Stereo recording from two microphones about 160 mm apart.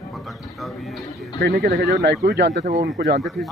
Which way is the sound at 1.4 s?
85° right.